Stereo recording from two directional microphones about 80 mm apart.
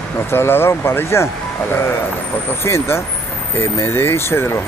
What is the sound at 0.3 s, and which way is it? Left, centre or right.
Speech, left.